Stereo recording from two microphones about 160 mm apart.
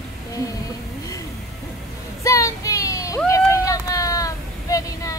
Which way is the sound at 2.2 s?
20° left (ahead or behind).